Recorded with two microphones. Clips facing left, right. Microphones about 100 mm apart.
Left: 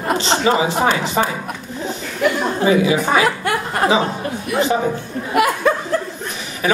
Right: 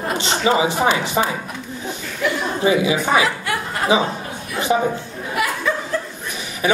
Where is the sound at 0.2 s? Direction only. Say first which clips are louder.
Even; 20° right (ahead or behind).